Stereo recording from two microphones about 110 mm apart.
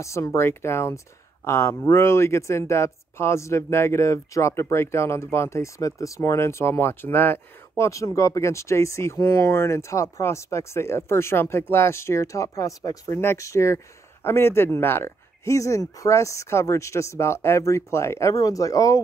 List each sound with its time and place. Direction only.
0.0 s speech: 25° left (ahead or behind)